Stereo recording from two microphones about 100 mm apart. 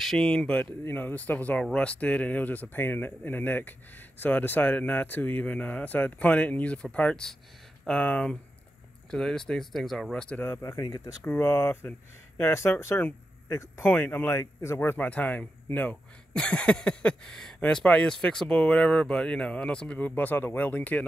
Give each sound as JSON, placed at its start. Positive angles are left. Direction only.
{"t": 0.0, "sound": "speech", "side_deg": 5}
{"t": 10.4, "sound": "speech", "side_deg": 25}
{"t": 11.2, "sound": "speech", "side_deg": 25}